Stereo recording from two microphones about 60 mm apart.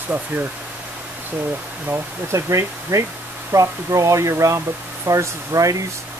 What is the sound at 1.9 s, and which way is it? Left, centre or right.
Speech, right.